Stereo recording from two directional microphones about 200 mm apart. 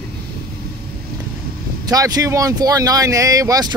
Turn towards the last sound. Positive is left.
turn(degrees=-20)  # may be behind; listen again after turning